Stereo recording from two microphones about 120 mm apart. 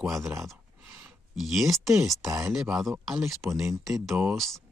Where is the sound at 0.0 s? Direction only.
Centre (ahead or behind).